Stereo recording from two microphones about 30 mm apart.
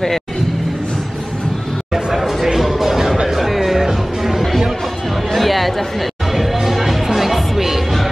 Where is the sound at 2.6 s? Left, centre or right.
Centre.